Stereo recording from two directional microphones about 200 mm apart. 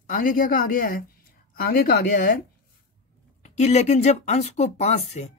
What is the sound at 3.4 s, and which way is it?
Speech, 35° left (ahead or behind).